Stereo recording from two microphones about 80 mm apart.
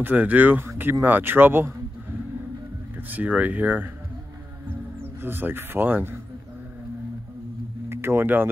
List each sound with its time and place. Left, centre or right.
0.0 s speech: right
3.1 s speech: right
5.0 s speech: right
7.9 s speech: right